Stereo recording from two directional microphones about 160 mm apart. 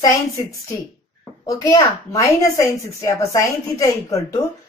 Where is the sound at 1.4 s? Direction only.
25° left (ahead or behind).